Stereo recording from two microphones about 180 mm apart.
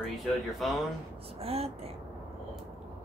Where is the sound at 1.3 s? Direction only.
35° right (ahead or behind).